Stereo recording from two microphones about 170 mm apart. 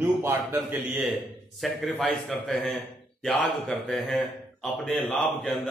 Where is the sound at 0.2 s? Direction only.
15° right (ahead or behind).